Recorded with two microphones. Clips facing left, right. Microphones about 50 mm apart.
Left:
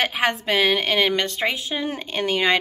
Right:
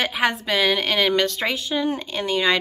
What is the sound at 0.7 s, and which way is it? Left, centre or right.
A woman's voice, left.